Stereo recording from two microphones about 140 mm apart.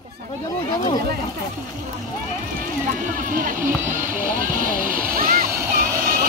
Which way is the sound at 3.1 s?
70° right (ahead or behind).